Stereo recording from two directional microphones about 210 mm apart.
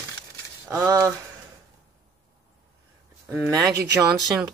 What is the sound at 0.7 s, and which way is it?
Speech, 15° right (ahead or behind).